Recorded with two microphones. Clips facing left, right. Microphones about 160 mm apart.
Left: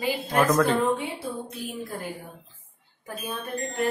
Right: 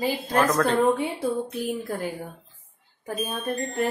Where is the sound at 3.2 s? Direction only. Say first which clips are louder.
Right 3 dB; 40° right (ahead or behind).